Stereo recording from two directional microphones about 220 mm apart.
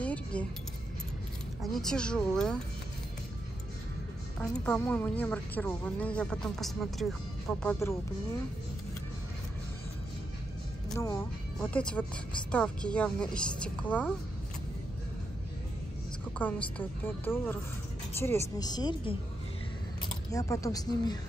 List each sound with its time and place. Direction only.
0.0 s chink: 5° left (ahead or behind)
1.6 s a woman's voice: centre (ahead or behind)
4.4 s a woman's voice: 5° left (ahead or behind)
11.6 s a woman's voice: 5° left (ahead or behind)
16.3 s a woman's voice: 5° left (ahead or behind)
20.2 s a woman's voice: 15° left (ahead or behind)